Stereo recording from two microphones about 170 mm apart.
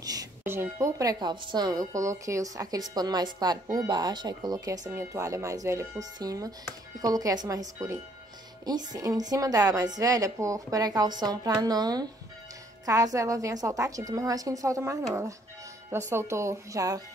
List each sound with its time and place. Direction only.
0.0 s speech: 20° right (ahead or behind)